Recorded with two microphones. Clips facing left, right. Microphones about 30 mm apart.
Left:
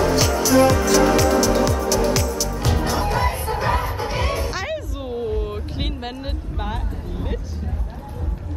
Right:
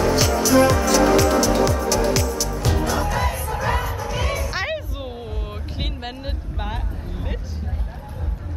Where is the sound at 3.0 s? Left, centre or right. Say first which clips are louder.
Left 2 dB; left.